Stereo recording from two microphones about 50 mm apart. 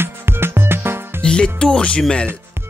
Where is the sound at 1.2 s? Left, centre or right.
Centre.